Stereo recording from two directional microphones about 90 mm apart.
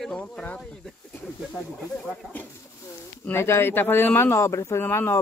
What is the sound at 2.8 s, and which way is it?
Speech, 30° left (ahead or behind).